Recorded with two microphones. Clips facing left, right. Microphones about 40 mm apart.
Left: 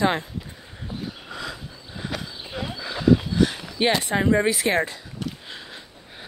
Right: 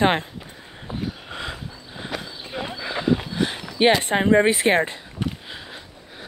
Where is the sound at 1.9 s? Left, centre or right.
Centre.